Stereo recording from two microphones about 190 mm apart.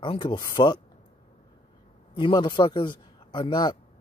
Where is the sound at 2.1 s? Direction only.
25° left (ahead or behind).